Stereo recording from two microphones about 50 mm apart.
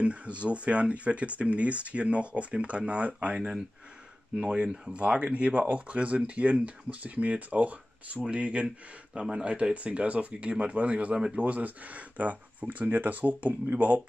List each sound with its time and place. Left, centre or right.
0.0 s speech: right
11.1 s speech: centre
11.4 s speech: right